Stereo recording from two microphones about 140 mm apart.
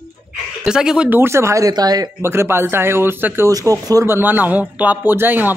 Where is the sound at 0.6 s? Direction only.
5° right (ahead or behind); by 2.1 s 30° right (ahead or behind).